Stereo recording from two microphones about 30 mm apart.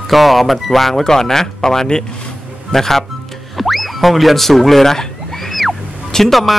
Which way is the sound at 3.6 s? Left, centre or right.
Centre.